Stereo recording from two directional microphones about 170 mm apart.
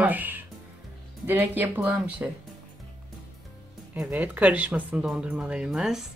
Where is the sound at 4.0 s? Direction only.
10° right (ahead or behind).